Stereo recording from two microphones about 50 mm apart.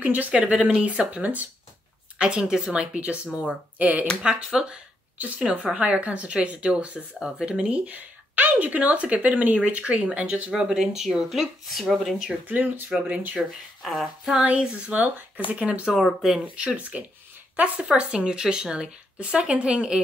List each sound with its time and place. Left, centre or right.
0.0 s speech: right
0.3 s speech: right
2.1 s a woman's voice: centre
2.8 s speech: right
4.2 s speech: centre
5.8 s speech: right
10.5 s a woman's voice: centre
12.4 s speech: right
13.5 s speech: centre
14.4 s speech: right
16.2 s a woman's voice: centre
16.5 s speech: right
17.8 s speech: centre